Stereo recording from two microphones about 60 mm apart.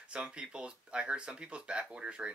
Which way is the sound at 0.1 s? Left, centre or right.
Centre.